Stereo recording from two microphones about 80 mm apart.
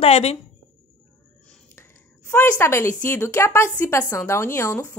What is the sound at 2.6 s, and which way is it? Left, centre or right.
A woman's voice, left.